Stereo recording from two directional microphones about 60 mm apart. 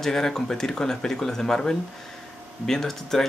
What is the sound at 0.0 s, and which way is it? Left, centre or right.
Speech, centre.